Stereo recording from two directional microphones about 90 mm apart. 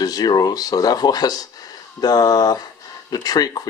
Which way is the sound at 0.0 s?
45° left (ahead or behind).